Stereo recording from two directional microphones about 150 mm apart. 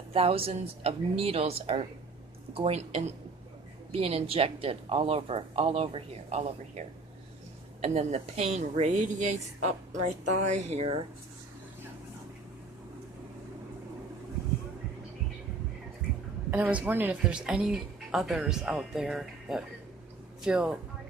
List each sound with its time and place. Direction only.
0.1 s a woman's voice: 40° right (ahead or behind)
16.4 s a woman's voice: 10° right (ahead or behind)